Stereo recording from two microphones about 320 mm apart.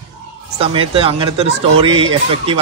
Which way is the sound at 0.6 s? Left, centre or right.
Centre.